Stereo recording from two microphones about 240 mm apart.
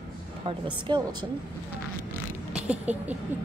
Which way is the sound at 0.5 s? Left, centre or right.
Centre.